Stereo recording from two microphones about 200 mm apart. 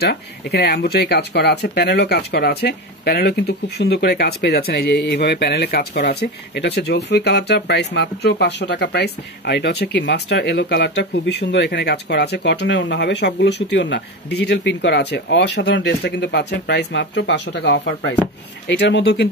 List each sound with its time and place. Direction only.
0.0 s speech: 55° left (ahead or behind)